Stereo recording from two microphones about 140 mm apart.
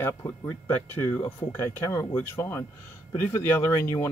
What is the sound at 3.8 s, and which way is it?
Speech, 20° left (ahead or behind).